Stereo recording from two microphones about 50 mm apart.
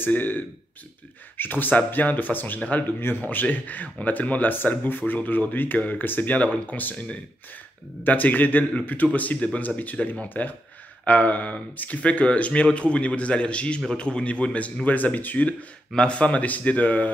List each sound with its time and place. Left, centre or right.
0.0 s speech: left
8.0 s speech: left